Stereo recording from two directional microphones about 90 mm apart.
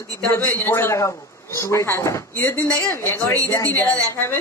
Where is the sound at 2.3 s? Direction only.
20° left (ahead or behind).